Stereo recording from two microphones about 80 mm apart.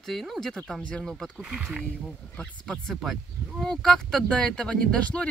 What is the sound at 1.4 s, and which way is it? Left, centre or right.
Speech, centre.